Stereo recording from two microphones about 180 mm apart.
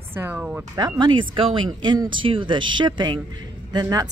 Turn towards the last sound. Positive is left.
turn(degrees=-20)  # may be behind; listen again after turning